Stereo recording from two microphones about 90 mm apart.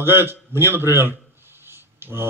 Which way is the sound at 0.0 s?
25° right (ahead or behind).